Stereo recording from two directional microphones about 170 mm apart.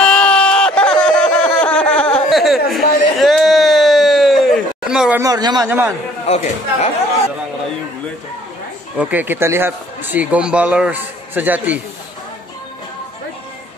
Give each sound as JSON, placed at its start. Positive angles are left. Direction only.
{"t": 0.0, "sound": "a sound", "side_deg": 5}
{"t": 5.2, "sound": "a man's voice", "side_deg": -25}
{"t": 6.2, "sound": "a man's voice", "side_deg": 40}
{"t": 8.9, "sound": "speech", "side_deg": -10}